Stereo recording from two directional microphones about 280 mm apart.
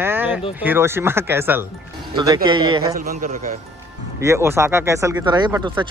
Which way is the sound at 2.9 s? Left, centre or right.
Right.